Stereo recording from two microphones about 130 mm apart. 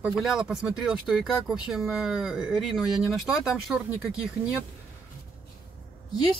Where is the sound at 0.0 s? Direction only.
5° right (ahead or behind).